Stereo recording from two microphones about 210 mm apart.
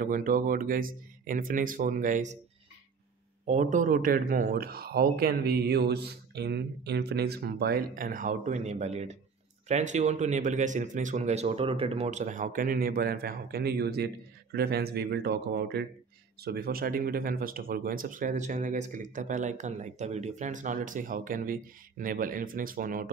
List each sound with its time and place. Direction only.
0.0 s speech: 40° right (ahead or behind)
3.4 s speech: 35° right (ahead or behind)